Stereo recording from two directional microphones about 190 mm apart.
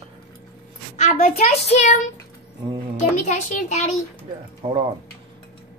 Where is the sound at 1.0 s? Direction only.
40° left (ahead or behind).